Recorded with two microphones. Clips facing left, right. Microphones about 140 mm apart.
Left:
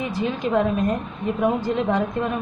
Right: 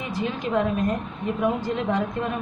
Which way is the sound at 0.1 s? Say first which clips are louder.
Left 3 dB; 30° left (ahead or behind).